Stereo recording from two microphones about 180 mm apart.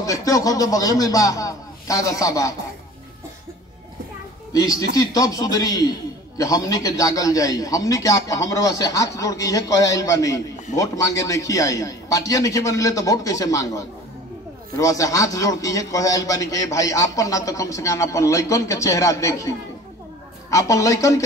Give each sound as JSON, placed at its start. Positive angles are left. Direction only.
{"t": 0.0, "sound": "a man's voice", "side_deg": 20}
{"t": 4.5, "sound": "a man's voice", "side_deg": 20}